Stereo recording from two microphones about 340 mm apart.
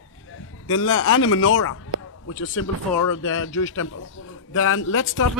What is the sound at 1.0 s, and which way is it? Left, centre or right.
A man's voice, left.